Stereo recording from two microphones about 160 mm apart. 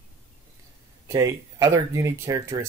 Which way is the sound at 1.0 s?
25° right (ahead or behind).